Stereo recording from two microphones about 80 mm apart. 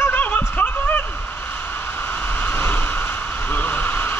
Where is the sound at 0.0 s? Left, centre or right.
Left.